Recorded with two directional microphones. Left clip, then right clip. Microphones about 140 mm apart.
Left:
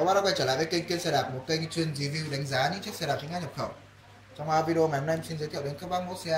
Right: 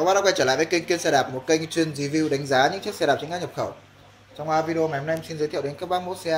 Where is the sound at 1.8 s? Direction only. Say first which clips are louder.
Right 9 dB; 75° right (ahead or behind).